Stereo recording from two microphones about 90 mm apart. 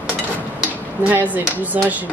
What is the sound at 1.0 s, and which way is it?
Speech, 20° right (ahead or behind).